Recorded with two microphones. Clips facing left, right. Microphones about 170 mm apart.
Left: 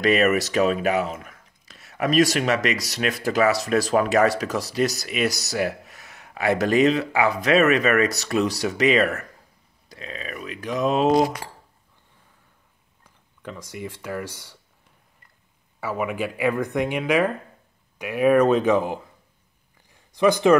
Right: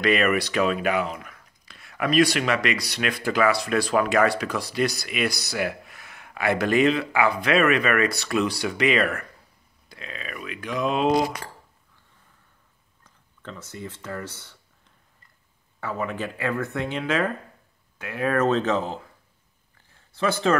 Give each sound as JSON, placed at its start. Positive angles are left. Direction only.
{"t": 0.0, "sound": "speech", "side_deg": 40}
{"t": 13.0, "sound": "speech", "side_deg": 10}
{"t": 15.8, "sound": "speech", "side_deg": 10}
{"t": 19.9, "sound": "a sound", "side_deg": 15}